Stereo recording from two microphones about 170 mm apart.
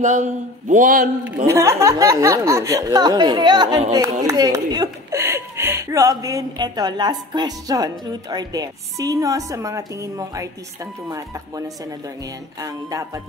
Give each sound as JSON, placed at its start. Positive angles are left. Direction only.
{"t": 0.0, "sound": "a man's voice", "side_deg": -45}
{"t": 1.5, "sound": "a woman's voice", "side_deg": -15}